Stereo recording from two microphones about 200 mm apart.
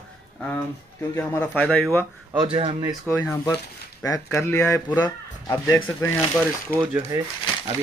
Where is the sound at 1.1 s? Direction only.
10° left (ahead or behind).